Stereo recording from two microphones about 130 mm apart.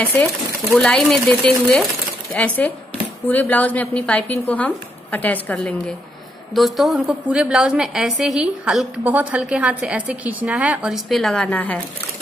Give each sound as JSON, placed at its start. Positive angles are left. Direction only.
{"t": 0.7, "sound": "a woman's voice", "side_deg": 5}
{"t": 11.1, "sound": "speech", "side_deg": 5}